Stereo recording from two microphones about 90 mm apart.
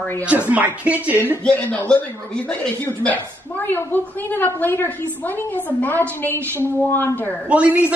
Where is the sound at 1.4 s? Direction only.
15° left (ahead or behind).